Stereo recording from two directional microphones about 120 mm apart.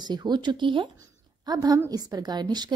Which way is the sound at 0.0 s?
35° right (ahead or behind).